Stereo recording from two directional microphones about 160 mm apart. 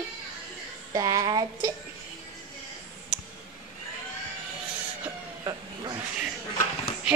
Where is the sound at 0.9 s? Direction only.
25° right (ahead or behind).